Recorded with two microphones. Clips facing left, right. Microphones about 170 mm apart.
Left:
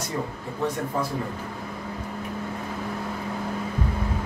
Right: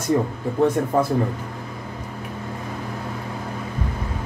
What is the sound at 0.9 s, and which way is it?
Speech, 55° right (ahead or behind).